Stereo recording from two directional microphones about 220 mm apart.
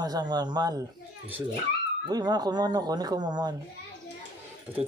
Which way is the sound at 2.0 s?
20° right (ahead or behind).